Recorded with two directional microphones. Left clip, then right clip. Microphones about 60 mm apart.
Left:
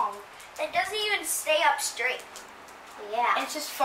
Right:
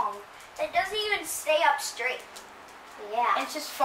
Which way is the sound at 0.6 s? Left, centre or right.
Centre.